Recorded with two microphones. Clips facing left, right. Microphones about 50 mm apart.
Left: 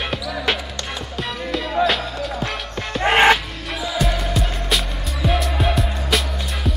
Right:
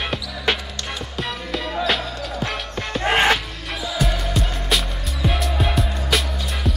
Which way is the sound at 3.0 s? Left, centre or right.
Left.